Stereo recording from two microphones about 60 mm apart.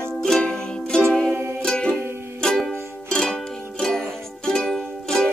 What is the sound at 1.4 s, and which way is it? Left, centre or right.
Music, right.